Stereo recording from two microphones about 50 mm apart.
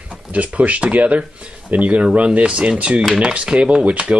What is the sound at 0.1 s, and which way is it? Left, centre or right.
Speech, right.